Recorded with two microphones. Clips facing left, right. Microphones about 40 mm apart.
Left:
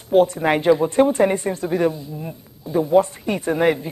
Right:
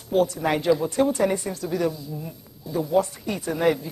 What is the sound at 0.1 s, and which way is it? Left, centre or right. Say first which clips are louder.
Speech: left 6 dB; left.